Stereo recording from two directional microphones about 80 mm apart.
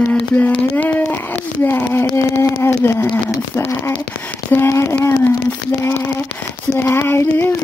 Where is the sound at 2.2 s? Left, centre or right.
Left.